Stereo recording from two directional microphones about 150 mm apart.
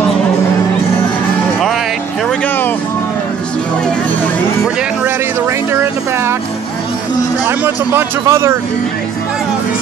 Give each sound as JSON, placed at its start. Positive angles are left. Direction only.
{"t": 2.2, "sound": "music", "side_deg": 10}
{"t": 5.7, "sound": "music", "side_deg": -15}
{"t": 7.4, "sound": "speech", "side_deg": -15}